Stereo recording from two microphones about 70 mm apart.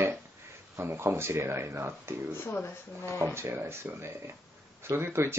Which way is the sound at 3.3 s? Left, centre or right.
Right.